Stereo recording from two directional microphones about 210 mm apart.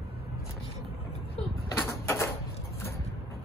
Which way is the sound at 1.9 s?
15° left (ahead or behind).